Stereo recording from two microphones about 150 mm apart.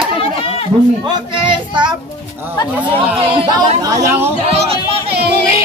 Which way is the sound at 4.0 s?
20° right (ahead or behind).